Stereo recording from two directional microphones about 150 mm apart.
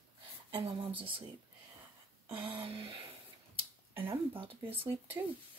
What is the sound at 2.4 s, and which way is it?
Speech, 35° right (ahead or behind).